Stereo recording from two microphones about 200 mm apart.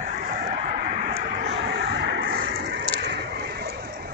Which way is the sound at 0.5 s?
35° right (ahead or behind).